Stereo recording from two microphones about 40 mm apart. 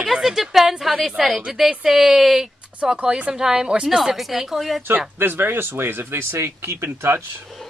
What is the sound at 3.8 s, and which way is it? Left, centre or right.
Speech, centre.